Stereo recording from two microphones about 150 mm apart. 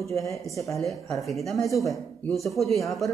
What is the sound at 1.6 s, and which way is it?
Speech, 20° left (ahead or behind).